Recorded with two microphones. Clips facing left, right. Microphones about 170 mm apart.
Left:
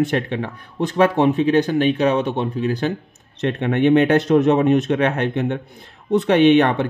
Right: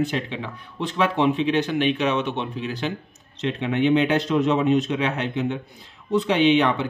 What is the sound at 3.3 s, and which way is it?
Speech, 55° left (ahead or behind).